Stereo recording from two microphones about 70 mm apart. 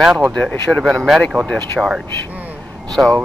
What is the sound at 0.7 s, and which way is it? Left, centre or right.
Speech, centre.